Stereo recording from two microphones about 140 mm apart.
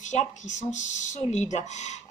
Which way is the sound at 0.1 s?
55° left (ahead or behind).